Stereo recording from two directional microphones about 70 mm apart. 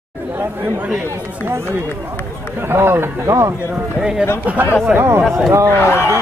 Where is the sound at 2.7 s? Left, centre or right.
Right.